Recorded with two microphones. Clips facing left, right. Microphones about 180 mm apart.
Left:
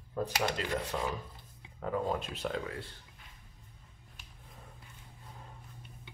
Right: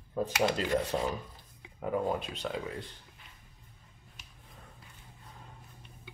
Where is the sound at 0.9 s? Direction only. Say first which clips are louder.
Right 3 dB; 30° right (ahead or behind).